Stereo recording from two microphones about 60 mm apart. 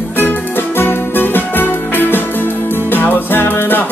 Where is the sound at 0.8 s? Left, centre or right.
Left.